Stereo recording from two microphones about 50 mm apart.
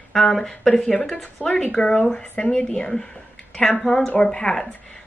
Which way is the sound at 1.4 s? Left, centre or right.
Left.